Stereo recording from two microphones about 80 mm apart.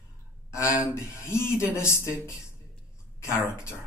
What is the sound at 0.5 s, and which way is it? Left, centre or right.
Speech, left.